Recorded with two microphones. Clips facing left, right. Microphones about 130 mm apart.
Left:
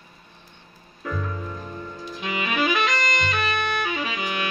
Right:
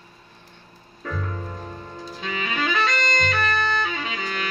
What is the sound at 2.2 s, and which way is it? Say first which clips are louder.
Music: left 3 dB; 15° left (ahead or behind).